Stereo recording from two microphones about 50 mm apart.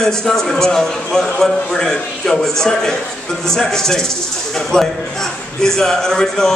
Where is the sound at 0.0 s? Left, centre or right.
Centre.